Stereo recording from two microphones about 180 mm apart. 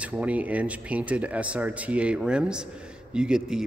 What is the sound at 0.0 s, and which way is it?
A man's voice, 5° right (ahead or behind).